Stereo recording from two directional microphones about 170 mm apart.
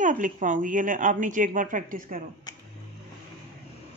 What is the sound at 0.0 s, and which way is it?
A woman's voice, 50° right (ahead or behind).